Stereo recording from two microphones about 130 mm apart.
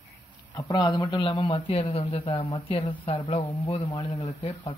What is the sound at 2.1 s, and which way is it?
Speech, 40° left (ahead or behind).